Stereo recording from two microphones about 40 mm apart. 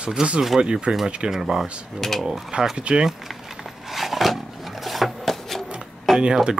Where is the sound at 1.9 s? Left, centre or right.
Centre.